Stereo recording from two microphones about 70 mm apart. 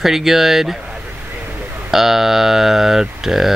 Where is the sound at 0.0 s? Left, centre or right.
Centre.